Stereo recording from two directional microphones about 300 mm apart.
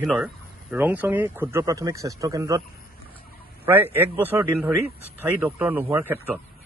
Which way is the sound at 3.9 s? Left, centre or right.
Centre.